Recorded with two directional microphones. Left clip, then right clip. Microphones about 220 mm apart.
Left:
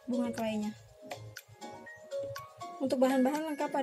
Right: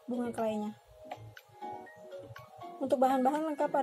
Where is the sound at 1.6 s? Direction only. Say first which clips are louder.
Right 4 dB; 55° left (ahead or behind).